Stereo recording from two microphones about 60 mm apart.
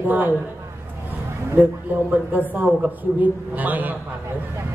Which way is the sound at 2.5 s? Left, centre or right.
Right.